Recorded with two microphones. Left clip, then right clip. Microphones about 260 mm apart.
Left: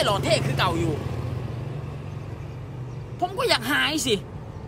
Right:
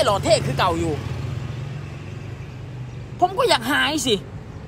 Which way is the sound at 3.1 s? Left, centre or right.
Centre.